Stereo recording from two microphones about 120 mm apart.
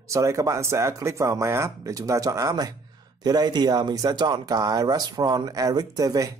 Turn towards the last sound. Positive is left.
turn(degrees=-30)  # may be behind; listen again after turning